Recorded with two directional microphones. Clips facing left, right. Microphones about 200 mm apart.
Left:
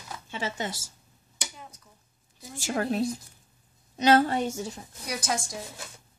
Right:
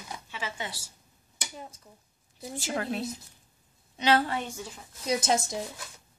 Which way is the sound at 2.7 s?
45° left (ahead or behind).